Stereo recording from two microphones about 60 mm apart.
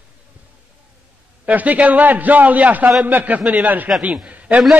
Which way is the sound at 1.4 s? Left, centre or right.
Right.